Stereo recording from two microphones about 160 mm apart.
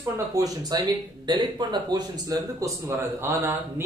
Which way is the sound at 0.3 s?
20° right (ahead or behind).